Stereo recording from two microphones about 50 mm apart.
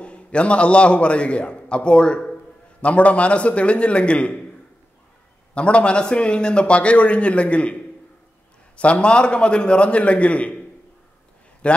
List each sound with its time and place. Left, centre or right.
0.0 s a man's voice: left
5.5 s a man's voice: left
8.7 s a man's voice: left
11.6 s a man's voice: left